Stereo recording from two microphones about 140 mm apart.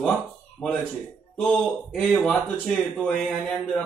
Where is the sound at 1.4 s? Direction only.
5° left (ahead or behind).